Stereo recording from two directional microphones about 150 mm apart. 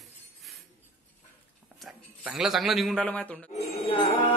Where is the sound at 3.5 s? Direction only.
35° left (ahead or behind).